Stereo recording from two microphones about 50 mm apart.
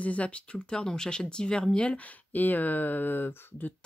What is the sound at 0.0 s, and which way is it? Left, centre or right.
Speech, left.